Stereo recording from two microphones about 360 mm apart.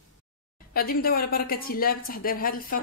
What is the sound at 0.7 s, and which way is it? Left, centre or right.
Speech, left.